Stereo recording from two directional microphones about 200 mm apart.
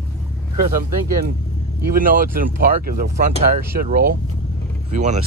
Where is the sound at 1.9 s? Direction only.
45° right (ahead or behind).